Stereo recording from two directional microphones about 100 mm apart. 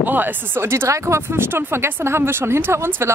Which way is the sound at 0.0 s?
20° right (ahead or behind).